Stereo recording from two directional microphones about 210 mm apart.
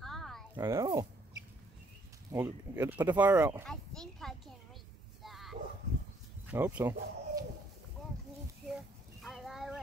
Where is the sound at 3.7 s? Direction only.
5° left (ahead or behind).